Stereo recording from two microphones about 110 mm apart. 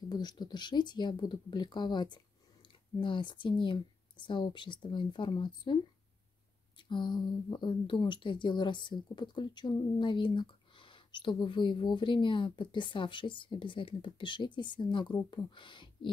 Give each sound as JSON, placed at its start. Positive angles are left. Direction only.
{"t": 0.1, "sound": "speech", "side_deg": 40}
{"t": 6.8, "sound": "speech", "side_deg": 45}